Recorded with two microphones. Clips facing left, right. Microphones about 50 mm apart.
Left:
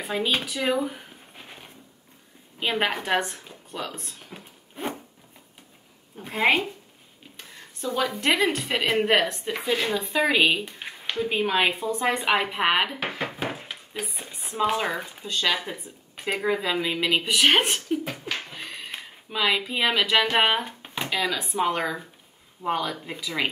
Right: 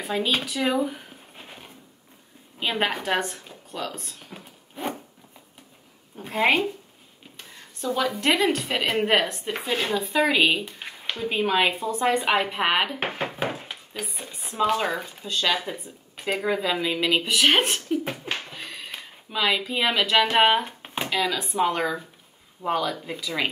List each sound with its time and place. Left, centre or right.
0.0 s speech: centre
0.5 s a sound: centre
2.6 s speech: centre
4.3 s zipper: centre
6.2 s speech: centre
7.9 s speech: centre
9.7 s speech: right
9.9 s speech: centre
13.5 s a sound: centre
14.7 s speech: centre
18.5 s a sound: centre
20.2 s speech: centre